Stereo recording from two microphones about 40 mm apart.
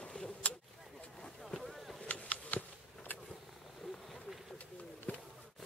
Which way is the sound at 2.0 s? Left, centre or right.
Left.